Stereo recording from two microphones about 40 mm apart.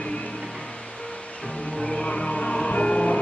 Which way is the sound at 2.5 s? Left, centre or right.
Left.